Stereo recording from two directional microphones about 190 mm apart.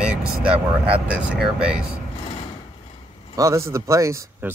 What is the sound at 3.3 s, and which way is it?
Speech, 15° right (ahead or behind).